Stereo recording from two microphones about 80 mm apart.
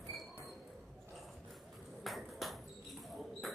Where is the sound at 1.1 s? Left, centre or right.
Centre.